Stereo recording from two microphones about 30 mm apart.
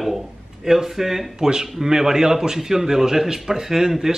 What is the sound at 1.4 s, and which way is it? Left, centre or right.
A man's voice, right.